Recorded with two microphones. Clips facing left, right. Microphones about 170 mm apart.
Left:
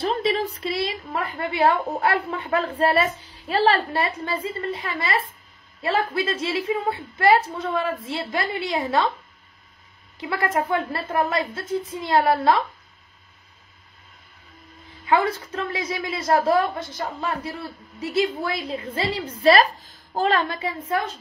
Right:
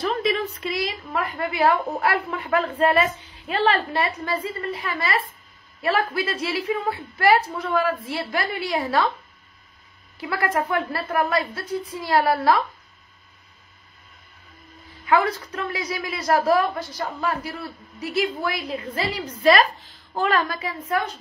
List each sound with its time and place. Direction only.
0.0 s a woman's voice: 30° left (ahead or behind)
10.2 s a woman's voice: 25° left (ahead or behind)
15.0 s a woman's voice: 25° left (ahead or behind)